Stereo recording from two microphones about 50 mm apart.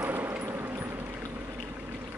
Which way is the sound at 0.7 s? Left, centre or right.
Right.